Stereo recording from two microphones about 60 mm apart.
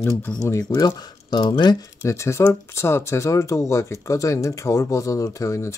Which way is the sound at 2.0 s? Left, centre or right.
Left.